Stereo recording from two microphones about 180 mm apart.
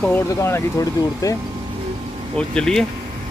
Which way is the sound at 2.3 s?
5° left (ahead or behind).